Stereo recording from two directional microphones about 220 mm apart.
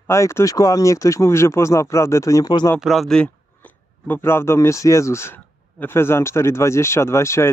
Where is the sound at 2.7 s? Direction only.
Centre (ahead or behind).